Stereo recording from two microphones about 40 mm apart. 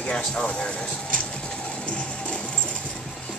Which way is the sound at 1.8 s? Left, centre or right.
Left.